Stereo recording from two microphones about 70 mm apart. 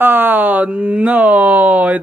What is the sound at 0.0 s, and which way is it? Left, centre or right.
Speech, right.